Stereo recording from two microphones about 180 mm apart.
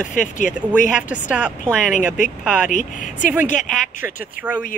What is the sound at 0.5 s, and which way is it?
Speech, 10° right (ahead or behind).